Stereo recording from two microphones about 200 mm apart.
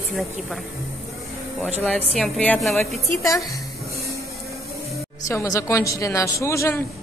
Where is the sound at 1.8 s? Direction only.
5° left (ahead or behind).